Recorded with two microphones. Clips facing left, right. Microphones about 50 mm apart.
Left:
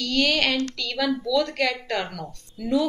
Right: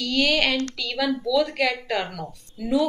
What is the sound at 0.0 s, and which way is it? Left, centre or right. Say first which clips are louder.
Speech: right 1 dB; centre.